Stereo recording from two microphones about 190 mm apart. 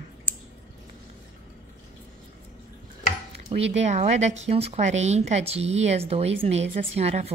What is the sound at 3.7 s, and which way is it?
A woman's voice, 35° right (ahead or behind).